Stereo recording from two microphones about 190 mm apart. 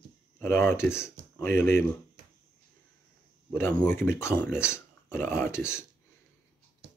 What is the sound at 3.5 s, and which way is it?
Speech, 10° left (ahead or behind).